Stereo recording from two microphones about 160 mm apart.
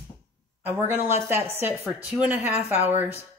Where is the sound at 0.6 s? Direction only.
15° right (ahead or behind).